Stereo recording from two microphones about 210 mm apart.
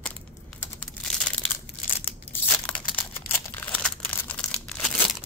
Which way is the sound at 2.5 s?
10° left (ahead or behind).